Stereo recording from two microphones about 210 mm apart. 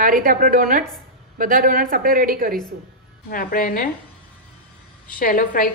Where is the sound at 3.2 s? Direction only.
45° left (ahead or behind).